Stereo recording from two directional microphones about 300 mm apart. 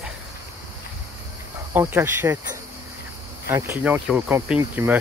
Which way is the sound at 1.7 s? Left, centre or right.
Centre.